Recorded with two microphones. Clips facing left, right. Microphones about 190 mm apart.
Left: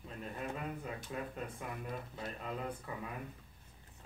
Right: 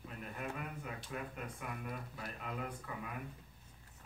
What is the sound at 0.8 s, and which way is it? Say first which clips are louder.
Speech: left 2 dB; 30° left (ahead or behind).